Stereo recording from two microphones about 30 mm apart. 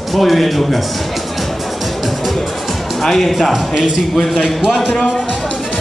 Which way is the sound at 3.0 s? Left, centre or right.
Centre.